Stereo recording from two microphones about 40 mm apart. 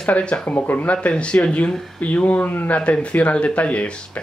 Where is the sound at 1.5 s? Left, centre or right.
Left.